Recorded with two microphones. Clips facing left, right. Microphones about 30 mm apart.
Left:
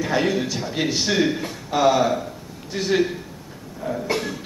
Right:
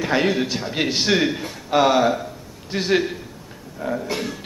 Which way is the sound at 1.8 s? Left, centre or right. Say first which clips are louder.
Right 1 dB; right.